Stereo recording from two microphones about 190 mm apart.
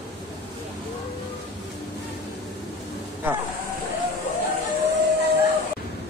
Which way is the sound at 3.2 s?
10° right (ahead or behind).